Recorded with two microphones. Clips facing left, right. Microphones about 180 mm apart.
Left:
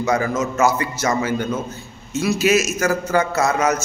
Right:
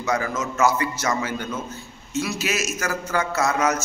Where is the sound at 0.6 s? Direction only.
10° left (ahead or behind).